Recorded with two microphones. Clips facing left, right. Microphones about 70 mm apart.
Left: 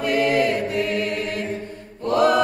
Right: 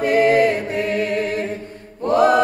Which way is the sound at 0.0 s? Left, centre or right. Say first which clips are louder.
Right 5 dB; right.